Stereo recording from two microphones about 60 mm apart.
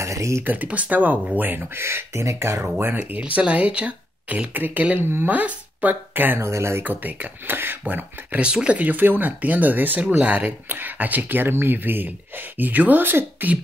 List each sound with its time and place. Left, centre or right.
0.0 s a sound: right
0.4 s speech: right
3.1 s speech: right
6.4 s speech: right
6.8 s speech: right